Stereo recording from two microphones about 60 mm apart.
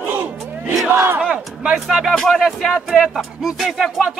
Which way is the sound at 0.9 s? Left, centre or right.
Right.